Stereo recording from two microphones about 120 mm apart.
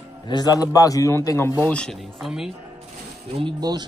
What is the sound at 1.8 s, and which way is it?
Speech, 5° left (ahead or behind).